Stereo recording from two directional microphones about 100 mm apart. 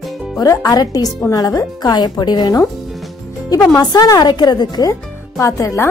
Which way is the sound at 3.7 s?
40° left (ahead or behind).